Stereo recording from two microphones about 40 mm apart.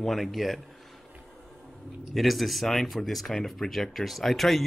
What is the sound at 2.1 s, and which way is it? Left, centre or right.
Speech, centre.